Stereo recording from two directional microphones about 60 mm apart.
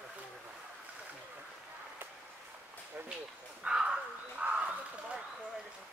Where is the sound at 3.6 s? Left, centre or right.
Centre.